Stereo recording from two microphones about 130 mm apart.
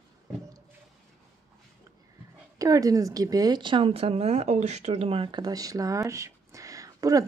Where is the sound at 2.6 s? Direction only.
25° right (ahead or behind); by 5.4 s 45° right (ahead or behind).